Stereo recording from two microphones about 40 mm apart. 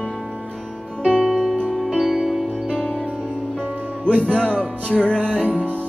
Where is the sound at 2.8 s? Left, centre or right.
Left.